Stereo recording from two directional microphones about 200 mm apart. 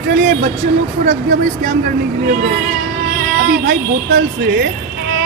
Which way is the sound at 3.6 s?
50° right (ahead or behind).